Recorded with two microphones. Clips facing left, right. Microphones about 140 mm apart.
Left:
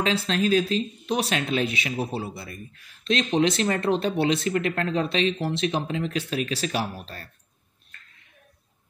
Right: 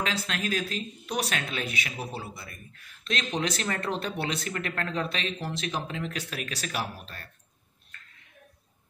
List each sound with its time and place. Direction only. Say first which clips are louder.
0.0 s speech: left 7 dB; 30° left (ahead or behind)